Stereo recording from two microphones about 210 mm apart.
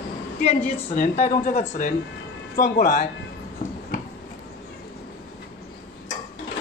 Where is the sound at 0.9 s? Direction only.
40° left (ahead or behind).